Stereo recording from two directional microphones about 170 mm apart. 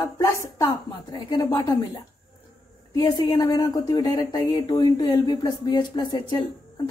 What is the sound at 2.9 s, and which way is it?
Speech, 25° left (ahead or behind).